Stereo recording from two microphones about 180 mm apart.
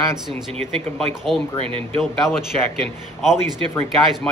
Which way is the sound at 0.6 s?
Centre (ahead or behind).